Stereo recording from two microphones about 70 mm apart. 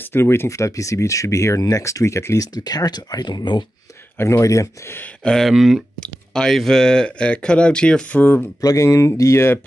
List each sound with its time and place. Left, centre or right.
0.0 s speech: left
2.4 s speech: left
4.2 s speech: left
5.2 s speech: centre
5.9 s speech: centre
8.2 s speech: left
8.5 s speech: left